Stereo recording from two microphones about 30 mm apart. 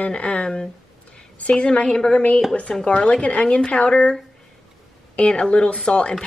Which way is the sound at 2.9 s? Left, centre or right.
Left.